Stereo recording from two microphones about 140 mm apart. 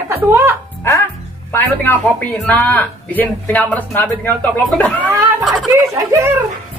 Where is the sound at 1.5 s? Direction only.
15° left (ahead or behind).